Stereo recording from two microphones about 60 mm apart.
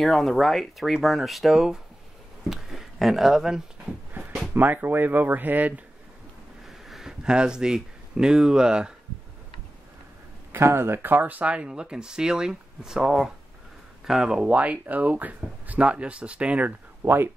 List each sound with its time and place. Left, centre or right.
0.0 s speech: centre
4.6 s speech: right
6.9 s speech: centre
10.5 s speech: right; by 14.6 s centre
14.6 s speech: right
17.0 s speech: right